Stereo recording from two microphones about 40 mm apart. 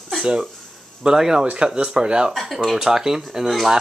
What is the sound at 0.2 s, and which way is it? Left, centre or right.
Speech, centre.